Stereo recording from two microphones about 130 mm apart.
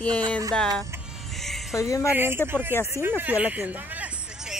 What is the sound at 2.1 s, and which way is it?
Speech, 15° right (ahead or behind).